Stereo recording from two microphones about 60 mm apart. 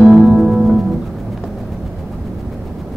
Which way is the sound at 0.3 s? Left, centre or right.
Centre.